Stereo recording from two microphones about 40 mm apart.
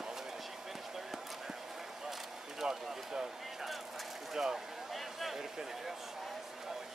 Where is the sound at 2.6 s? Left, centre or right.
Centre.